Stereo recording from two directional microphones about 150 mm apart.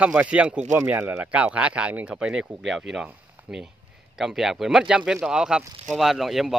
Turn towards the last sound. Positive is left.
turn(degrees=0)  # may be behind; listen again after turning